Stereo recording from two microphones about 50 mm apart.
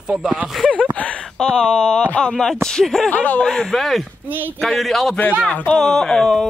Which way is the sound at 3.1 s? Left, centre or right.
Left.